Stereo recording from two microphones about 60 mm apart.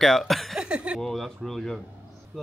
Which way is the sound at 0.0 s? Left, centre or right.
Centre.